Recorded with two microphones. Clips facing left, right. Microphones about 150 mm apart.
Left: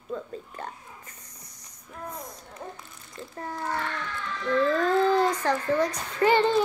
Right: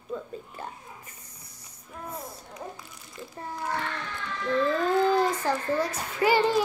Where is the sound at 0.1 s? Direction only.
10° right (ahead or behind).